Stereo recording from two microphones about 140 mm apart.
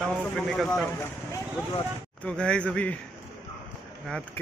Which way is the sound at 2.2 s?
10° left (ahead or behind).